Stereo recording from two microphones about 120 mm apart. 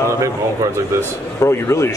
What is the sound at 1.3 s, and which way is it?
Speech, 25° left (ahead or behind).